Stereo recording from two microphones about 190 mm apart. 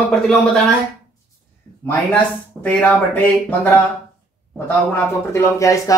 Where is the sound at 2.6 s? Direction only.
5° left (ahead or behind).